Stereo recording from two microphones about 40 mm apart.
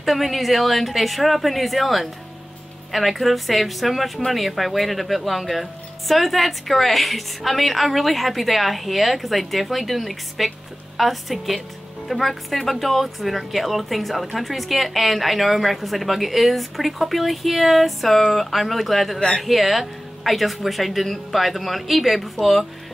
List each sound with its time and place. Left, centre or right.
0.0 s speech: centre
19.1 s speech: centre
19.4 s speech: centre